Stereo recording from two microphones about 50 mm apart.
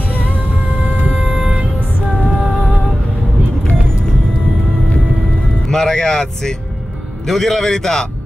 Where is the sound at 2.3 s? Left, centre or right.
Centre.